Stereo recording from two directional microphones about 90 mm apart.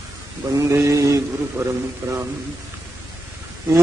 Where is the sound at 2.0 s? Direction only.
25° right (ahead or behind).